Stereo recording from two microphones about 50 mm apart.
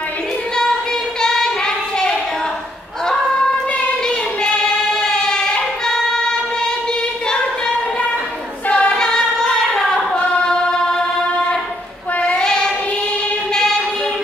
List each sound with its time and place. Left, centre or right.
1.2 s child singing: centre
5.0 s choir: centre
8.6 s choir: left
8.9 s singing: centre
12.2 s child singing: centre
13.5 s music: centre